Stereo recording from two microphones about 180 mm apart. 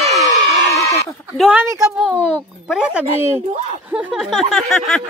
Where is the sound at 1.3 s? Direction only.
5° right (ahead or behind).